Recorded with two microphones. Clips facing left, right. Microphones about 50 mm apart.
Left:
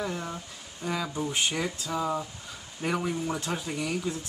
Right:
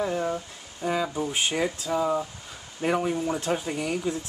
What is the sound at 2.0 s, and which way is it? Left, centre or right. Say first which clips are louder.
Speech: right 4 dB; centre.